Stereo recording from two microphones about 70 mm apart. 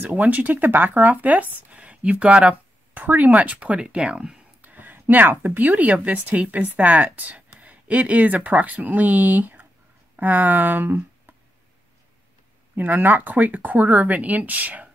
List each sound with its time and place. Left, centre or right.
0.0 s speech: right
4.6 s speech: right
12.7 s speech: right